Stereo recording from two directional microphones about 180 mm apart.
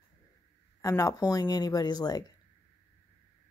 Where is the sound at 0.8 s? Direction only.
20° left (ahead or behind).